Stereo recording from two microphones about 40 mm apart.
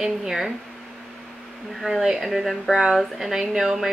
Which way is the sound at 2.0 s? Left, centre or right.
Centre.